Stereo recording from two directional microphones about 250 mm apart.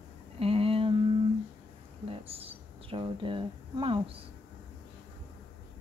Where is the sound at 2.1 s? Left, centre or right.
Right.